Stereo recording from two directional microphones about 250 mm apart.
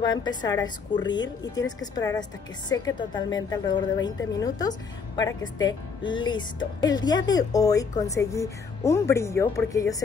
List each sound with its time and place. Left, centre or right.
0.0 s a woman's voice: centre